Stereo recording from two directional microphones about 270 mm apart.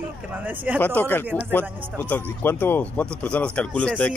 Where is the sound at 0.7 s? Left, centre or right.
Centre.